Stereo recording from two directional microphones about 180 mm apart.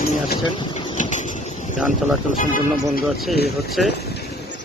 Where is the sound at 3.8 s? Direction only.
Centre (ahead or behind).